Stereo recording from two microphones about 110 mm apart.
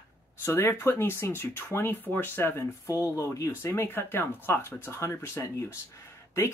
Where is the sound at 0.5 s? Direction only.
20° left (ahead or behind).